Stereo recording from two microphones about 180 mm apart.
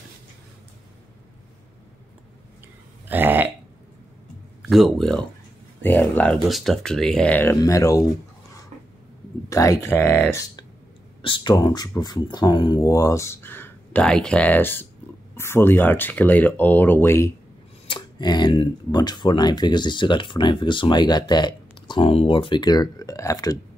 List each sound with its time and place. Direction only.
3.1 s burping: 10° right (ahead or behind)
4.6 s speech: centre (ahead or behind); by 8.0 s 20° left (ahead or behind)
9.5 s speech: 15° left (ahead or behind)
11.2 s speech: 25° left (ahead or behind)
17.8 s speech: 25° left (ahead or behind)